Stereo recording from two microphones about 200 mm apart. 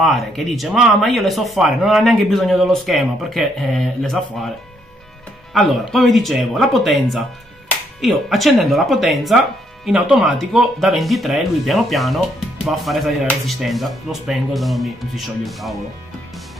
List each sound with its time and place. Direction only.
0.0 s speech: centre (ahead or behind)
5.5 s speech: centre (ahead or behind)